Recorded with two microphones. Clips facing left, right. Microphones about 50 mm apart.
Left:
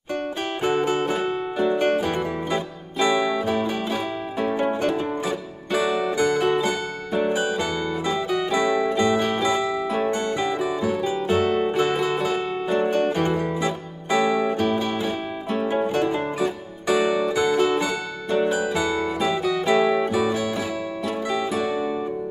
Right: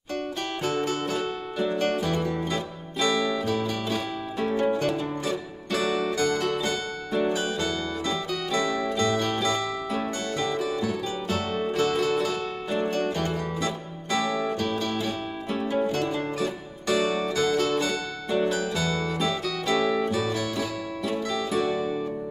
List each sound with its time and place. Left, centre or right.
0.6 s music: centre
21.5 s music: centre